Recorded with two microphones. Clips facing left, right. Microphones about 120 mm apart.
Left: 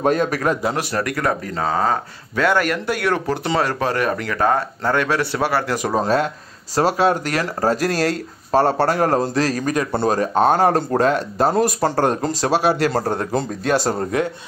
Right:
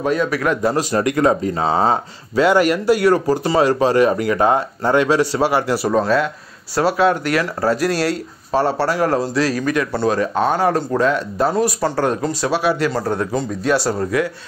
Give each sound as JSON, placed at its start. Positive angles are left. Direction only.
{"t": 0.0, "sound": "speech", "side_deg": 45}
{"t": 0.9, "sound": "speech", "side_deg": -20}
{"t": 2.3, "sound": "speech", "side_deg": -10}
{"t": 6.0, "sound": "speech", "side_deg": 40}
{"t": 13.9, "sound": "a man's voice", "side_deg": 25}